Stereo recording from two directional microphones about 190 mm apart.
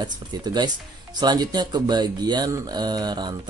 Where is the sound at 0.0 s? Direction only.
20° right (ahead or behind).